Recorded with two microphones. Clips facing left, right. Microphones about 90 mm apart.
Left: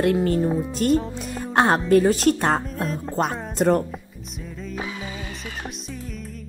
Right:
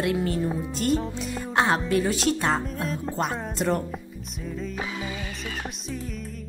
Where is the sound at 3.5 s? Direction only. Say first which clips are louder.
Left 7 dB; 45° left (ahead or behind).